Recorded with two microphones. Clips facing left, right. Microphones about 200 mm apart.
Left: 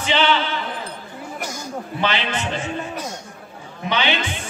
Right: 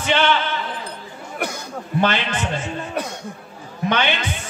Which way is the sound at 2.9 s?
60° right (ahead or behind).